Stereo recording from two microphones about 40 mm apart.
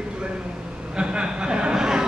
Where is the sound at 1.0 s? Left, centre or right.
Right.